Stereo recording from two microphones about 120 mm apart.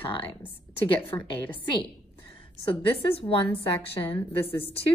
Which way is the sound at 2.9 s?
50° left (ahead or behind).